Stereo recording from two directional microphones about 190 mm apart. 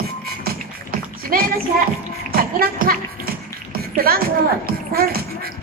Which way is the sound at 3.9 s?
50° right (ahead or behind).